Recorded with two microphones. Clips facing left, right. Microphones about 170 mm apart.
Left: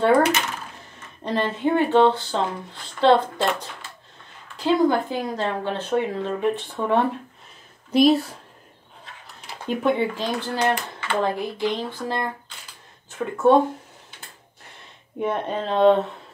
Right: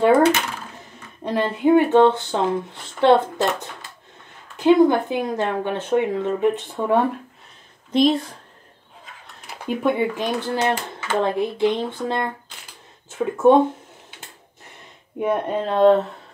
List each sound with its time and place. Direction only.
0.0 s speech: 25° right (ahead or behind)
1.2 s speech: 10° right (ahead or behind)
7.9 s speech: 5° left (ahead or behind)
9.5 s speech: 10° right (ahead or behind)
13.2 s speech: 15° right (ahead or behind)
15.1 s speech: 10° right (ahead or behind)